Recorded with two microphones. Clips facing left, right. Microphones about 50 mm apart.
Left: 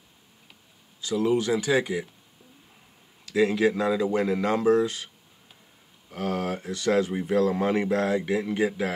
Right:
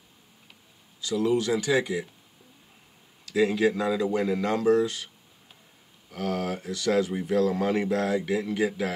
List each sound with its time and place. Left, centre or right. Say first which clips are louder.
1.0 s speech: left 1 dB; centre
3.6 s speech: left 1 dB; centre
6.0 s speech: left 1 dB; left